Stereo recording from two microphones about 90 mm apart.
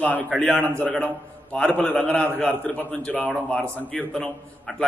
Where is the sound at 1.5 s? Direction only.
15° left (ahead or behind).